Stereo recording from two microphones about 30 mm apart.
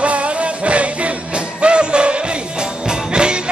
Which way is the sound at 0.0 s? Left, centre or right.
Right.